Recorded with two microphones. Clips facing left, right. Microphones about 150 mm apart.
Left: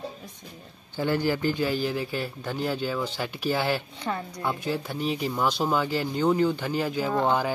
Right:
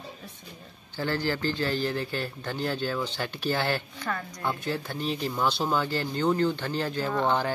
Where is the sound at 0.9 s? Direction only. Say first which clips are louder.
Left 3 dB; 15° left (ahead or behind).